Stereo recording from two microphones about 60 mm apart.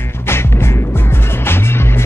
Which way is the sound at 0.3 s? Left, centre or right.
Left.